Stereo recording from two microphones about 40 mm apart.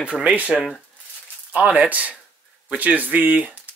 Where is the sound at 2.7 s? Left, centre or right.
Right.